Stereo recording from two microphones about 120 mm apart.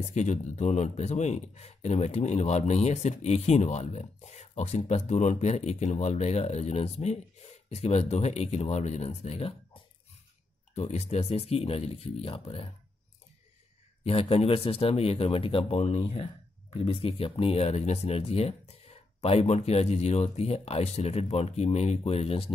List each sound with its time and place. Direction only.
0.0 s speech: 75° left (ahead or behind)
10.7 s speech: 65° left (ahead or behind)
14.0 s speech: 55° left (ahead or behind)